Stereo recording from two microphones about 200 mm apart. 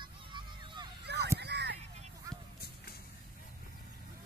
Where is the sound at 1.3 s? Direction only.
55° right (ahead or behind).